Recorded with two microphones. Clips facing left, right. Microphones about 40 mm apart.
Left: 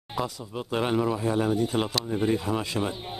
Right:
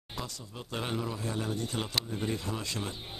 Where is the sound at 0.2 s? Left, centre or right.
Centre.